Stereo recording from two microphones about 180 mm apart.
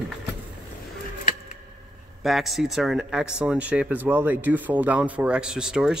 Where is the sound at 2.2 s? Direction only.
Centre (ahead or behind).